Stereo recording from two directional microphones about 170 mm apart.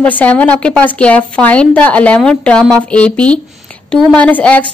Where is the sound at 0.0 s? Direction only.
10° left (ahead or behind).